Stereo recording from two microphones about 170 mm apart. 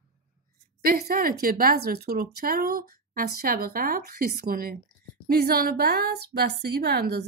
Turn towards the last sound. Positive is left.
turn(degrees=-65)  # may be behind; listen again after turning